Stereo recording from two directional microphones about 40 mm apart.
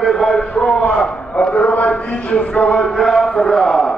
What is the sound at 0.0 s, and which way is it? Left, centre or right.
Speech, centre.